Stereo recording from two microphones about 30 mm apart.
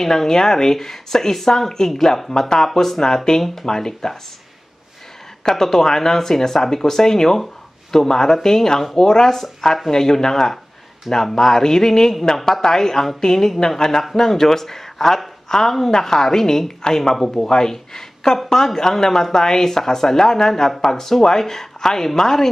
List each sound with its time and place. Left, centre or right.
0.0 s speech: centre
5.4 s a woman's voice: centre